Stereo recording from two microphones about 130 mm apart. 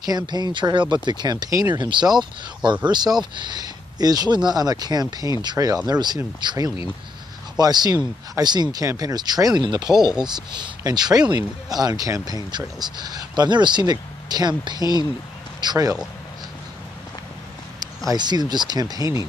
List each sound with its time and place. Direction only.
0.0 s speech: 30° right (ahead or behind)
18.1 s speech: 35° right (ahead or behind)